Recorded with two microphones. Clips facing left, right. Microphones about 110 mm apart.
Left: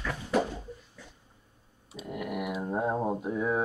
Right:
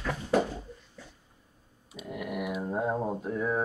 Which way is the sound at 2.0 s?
Centre (ahead or behind).